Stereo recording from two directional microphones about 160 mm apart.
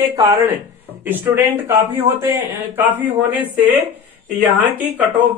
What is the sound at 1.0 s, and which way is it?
Speech, 10° right (ahead or behind).